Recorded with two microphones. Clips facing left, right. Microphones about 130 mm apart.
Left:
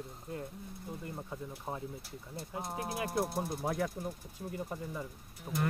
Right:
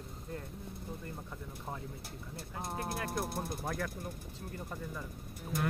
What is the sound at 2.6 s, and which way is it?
Speech, 10° left (ahead or behind).